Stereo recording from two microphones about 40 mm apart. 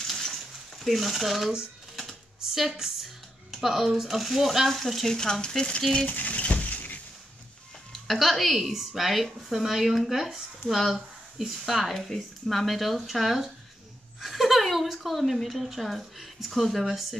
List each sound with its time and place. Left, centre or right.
0.0 s a sound: centre
0.7 s a woman's voice: centre
5.1 s speech: centre
6.0 s a sound: left
7.9 s a woman's voice: centre
14.2 s chuckle: centre
15.4 s a woman's voice: centre